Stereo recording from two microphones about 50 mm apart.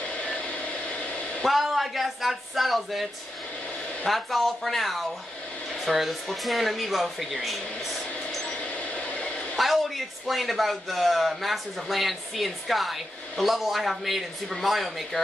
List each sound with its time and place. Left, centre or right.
0.1 s vehicle: left
1.4 s a man's voice: centre
8.5 s a sound: left
9.6 s a man's voice: centre